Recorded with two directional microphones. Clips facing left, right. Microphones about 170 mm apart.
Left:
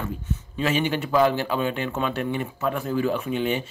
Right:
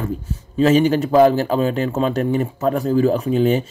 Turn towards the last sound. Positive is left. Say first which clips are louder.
# right 8 dB
turn(degrees=-40)  # may be behind; listen again after turning